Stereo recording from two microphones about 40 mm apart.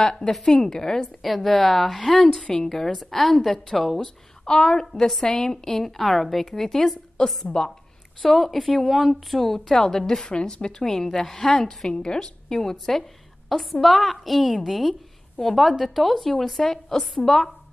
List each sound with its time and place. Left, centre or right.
0.3 s a woman's voice: centre
1.2 s a woman's voice: centre
4.5 s a woman's voice: centre
7.4 s a woman's voice: left
8.2 s a woman's voice: centre
8.8 s a woman's voice: centre
9.1 s a woman's voice: centre